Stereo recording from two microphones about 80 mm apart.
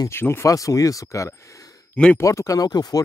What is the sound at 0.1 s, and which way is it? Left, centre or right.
Speech, left.